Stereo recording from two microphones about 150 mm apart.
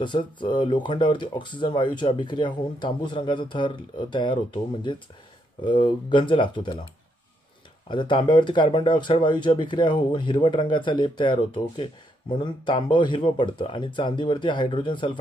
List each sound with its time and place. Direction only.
0.0 s speech: 30° left (ahead or behind)
5.6 s speech: 30° left (ahead or behind)
7.9 s speech: 30° left (ahead or behind)